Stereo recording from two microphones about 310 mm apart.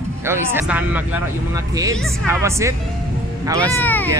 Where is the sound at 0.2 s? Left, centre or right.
Centre.